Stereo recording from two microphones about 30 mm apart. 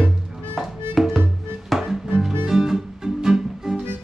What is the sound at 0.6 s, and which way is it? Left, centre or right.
Music, centre.